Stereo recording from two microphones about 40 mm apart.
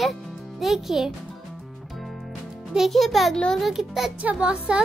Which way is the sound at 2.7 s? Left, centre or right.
Centre.